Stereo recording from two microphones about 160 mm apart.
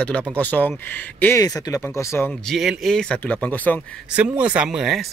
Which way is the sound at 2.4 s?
Centre (ahead or behind).